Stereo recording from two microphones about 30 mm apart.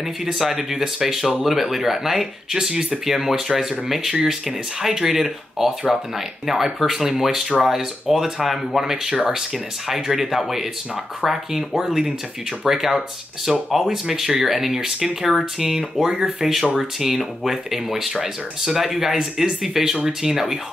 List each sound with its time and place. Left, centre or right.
0.0 s speech: centre
2.7 s speech: centre
3.1 s speech: centre
8.9 s speech: right
17.2 s speech: centre